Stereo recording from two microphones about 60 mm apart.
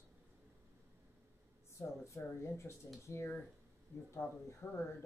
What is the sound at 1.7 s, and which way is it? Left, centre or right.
A man's voice, left.